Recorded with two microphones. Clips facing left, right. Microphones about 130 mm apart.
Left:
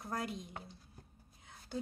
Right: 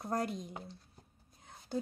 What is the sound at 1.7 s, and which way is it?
Speech, 35° right (ahead or behind).